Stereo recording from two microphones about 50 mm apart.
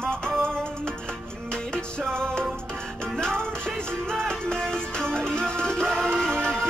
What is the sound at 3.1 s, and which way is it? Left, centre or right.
Music, centre.